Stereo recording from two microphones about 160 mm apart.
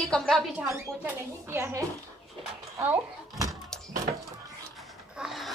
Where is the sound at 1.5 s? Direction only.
15° right (ahead or behind).